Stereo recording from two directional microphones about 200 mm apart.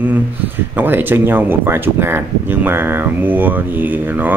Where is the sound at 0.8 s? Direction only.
10° right (ahead or behind).